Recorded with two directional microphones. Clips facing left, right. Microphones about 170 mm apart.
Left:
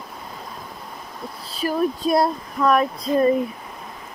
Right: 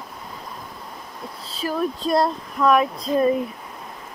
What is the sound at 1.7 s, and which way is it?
Speech, 10° left (ahead or behind).